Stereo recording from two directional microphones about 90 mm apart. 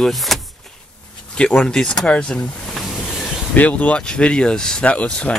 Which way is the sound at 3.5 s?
15° left (ahead or behind).